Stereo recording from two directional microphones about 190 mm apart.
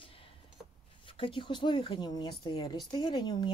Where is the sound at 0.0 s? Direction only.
30° left (ahead or behind).